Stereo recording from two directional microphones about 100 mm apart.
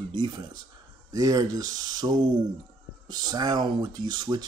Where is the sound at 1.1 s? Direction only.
35° right (ahead or behind).